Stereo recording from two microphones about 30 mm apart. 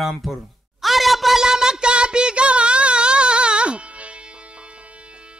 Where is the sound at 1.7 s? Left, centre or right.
Right.